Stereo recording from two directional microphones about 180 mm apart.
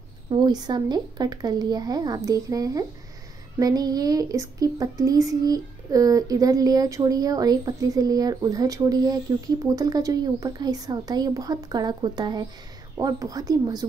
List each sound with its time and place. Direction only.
0.3 s speech: 25° right (ahead or behind)